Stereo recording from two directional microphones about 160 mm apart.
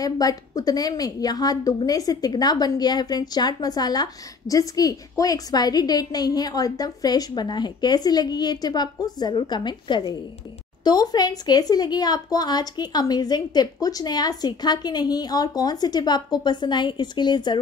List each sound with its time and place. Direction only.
0.0 s a woman's voice: 25° left (ahead or behind)